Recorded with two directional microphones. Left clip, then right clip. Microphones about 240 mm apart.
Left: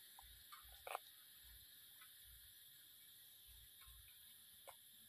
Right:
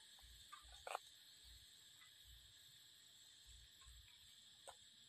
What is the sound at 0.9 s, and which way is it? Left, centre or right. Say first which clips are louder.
Frog: even; centre.